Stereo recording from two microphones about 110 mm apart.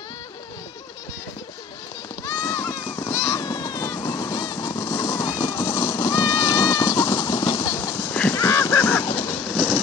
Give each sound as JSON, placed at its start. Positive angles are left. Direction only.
{"t": 2.2, "sound": "a sound", "side_deg": 30}
{"t": 7.8, "sound": "horse", "side_deg": 20}
{"t": 9.3, "sound": "vehicle", "side_deg": 10}